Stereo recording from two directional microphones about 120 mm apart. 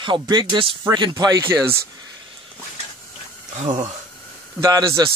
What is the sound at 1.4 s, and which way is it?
Speech, 20° right (ahead or behind).